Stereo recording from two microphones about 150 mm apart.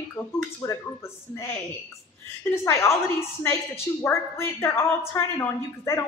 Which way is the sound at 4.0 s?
15° left (ahead or behind).